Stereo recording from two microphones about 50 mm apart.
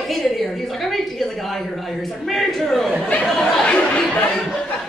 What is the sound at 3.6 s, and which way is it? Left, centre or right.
Speech, left.